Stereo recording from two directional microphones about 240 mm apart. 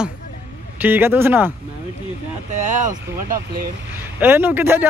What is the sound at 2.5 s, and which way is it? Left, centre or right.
Speech, right.